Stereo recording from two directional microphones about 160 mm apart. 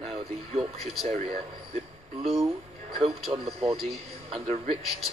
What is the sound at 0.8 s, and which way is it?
Speech, centre (ahead or behind).